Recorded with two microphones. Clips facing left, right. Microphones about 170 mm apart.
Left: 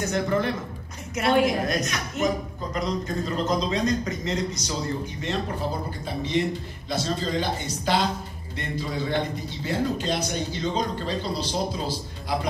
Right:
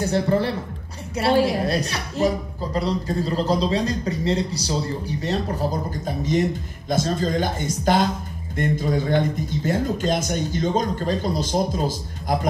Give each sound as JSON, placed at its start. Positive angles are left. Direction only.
{"t": 0.0, "sound": "a woman's voice", "side_deg": -30}